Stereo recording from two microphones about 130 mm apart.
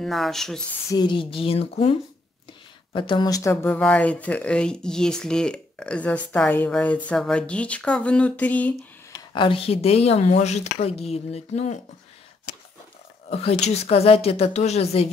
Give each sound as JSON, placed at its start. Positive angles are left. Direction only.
{"t": 0.0, "sound": "speech", "side_deg": 0}
{"t": 0.8, "sound": "speech", "side_deg": 35}
{"t": 3.6, "sound": "speech", "side_deg": 10}
{"t": 9.1, "sound": "speech", "side_deg": 40}
{"t": 13.3, "sound": "speech", "side_deg": 50}